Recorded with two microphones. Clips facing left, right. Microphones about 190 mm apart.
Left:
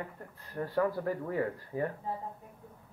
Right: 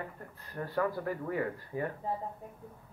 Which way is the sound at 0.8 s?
30° left (ahead or behind).